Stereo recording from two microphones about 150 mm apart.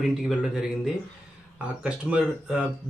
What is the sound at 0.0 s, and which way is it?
Speech, 5° right (ahead or behind).